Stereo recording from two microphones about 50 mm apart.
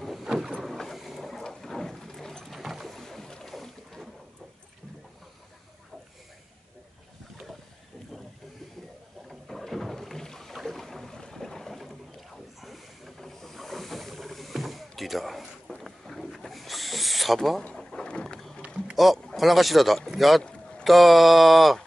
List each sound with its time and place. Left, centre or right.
0.0 s vehicle: centre
1.4 s boat: centre
9.3 s boat: centre
15.8 s owl: centre
17.7 s vehicle: centre
18.6 s a sound: right
19.3 s a sound: centre
20.2 s speech: centre
20.8 s a sound: centre